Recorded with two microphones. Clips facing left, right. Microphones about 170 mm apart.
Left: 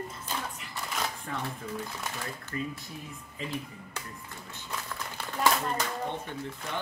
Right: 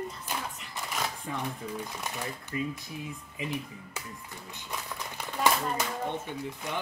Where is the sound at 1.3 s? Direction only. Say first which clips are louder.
Right 1 dB; 10° right (ahead or behind).